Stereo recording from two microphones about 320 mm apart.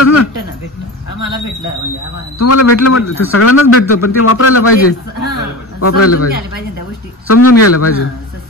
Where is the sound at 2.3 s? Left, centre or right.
Left.